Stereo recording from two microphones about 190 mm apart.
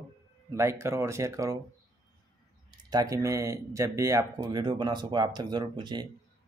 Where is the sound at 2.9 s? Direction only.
20° right (ahead or behind).